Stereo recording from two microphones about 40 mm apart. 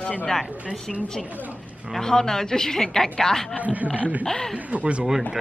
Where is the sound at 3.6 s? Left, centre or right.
Right.